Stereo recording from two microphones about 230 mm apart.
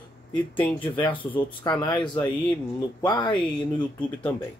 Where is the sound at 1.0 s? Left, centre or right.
Left.